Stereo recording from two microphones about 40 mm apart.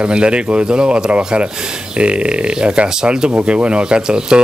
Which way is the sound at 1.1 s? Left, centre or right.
Right.